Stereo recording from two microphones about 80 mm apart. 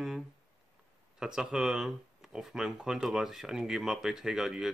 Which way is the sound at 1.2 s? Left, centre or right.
Centre.